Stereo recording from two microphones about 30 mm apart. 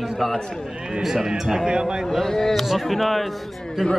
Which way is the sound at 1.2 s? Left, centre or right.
Centre.